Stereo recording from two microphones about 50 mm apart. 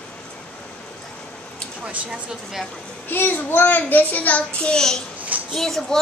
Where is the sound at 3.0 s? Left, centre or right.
Left.